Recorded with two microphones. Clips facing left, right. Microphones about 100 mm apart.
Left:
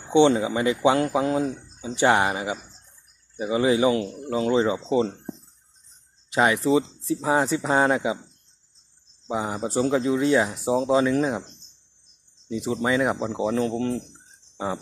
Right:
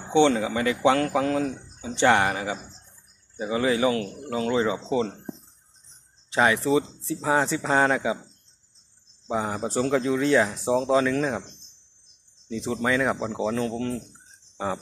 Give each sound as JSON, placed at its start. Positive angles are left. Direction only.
{"t": 0.1, "sound": "speech", "side_deg": 20}
{"t": 6.3, "sound": "speech", "side_deg": 25}
{"t": 9.3, "sound": "speech", "side_deg": 10}
{"t": 11.0, "sound": "speech", "side_deg": 20}
{"t": 12.4, "sound": "speech", "side_deg": 10}